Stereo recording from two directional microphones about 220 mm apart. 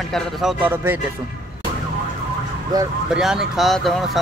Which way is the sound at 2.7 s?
15° right (ahead or behind).